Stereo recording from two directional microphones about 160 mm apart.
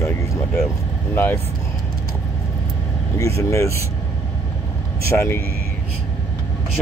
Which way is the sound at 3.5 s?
20° left (ahead or behind).